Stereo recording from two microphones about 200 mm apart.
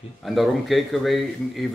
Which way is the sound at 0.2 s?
Centre (ahead or behind).